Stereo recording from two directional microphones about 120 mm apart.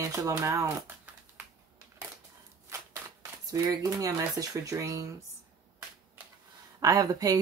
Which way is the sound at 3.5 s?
30° right (ahead or behind).